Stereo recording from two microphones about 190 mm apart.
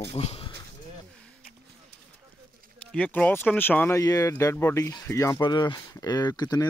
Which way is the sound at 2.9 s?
5° left (ahead or behind).